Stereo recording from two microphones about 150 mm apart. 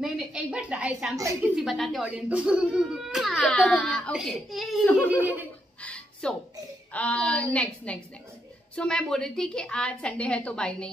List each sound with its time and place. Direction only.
0.0 s a woman's voice: 5° right (ahead or behind)
1.1 s a woman's voice: 20° right (ahead or behind)
1.5 s a child's voice: centre (ahead or behind)
5.8 s a sound: 10° left (ahead or behind)
6.9 s a woman's voice: 10° left (ahead or behind)